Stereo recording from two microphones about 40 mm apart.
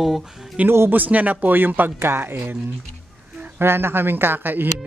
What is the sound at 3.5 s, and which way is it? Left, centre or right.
Speech, right.